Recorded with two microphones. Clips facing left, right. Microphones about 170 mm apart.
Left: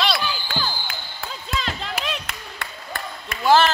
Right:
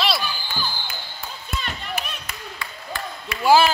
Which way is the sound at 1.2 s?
90° left.